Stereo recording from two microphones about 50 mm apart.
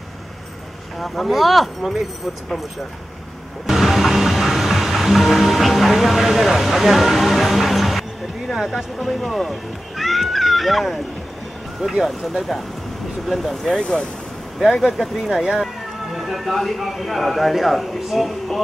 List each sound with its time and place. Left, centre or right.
0.9 s speech: centre
3.6 s music: centre
8.5 s speech: centre
13.7 s speech: centre
14.6 s speech: centre